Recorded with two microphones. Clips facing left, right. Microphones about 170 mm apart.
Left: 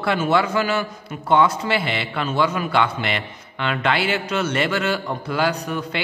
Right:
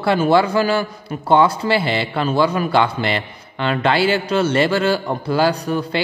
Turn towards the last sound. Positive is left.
turn(degrees=-35)  # may be behind; listen again after turning